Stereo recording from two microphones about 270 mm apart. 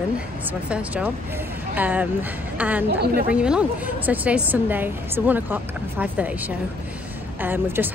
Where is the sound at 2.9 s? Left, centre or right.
Right.